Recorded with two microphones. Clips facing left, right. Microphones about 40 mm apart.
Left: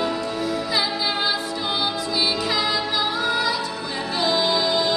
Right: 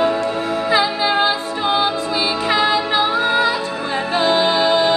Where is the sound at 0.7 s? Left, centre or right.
Right.